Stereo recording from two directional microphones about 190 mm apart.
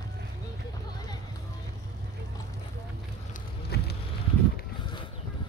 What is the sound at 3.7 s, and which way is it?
Boat, 55° left (ahead or behind).